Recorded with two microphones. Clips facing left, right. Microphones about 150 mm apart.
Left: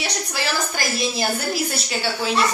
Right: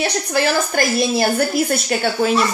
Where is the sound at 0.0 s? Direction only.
55° right (ahead or behind).